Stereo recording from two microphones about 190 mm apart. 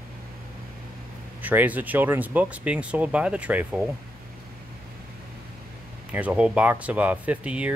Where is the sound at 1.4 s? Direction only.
10° right (ahead or behind).